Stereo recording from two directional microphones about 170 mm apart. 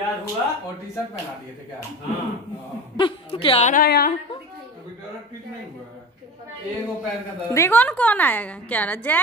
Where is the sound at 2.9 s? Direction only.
30° left (ahead or behind).